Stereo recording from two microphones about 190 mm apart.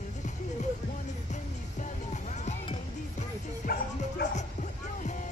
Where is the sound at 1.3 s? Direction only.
40° left (ahead or behind).